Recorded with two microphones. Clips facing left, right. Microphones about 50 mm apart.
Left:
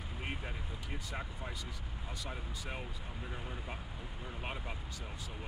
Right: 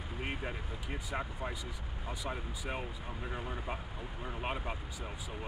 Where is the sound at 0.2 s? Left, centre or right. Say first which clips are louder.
Right 4 dB; centre.